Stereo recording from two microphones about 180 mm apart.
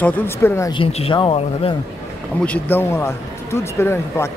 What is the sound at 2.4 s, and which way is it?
Speech, 10° left (ahead or behind).